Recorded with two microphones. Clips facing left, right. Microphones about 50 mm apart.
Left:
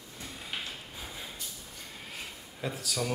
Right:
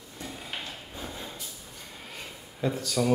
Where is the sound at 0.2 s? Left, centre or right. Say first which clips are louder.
Right 2 dB; centre.